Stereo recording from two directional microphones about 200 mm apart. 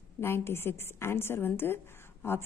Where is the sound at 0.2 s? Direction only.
10° left (ahead or behind).